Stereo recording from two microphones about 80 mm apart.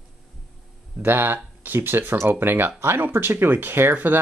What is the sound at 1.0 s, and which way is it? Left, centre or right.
Speech, right.